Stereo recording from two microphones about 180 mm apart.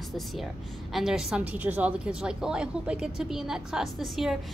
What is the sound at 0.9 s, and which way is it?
A woman's voice, centre (ahead or behind).